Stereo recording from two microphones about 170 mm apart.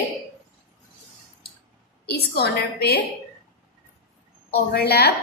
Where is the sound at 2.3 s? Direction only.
70° left (ahead or behind).